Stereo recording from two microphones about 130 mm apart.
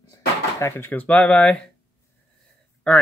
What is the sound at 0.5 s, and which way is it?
Speech, 20° left (ahead or behind).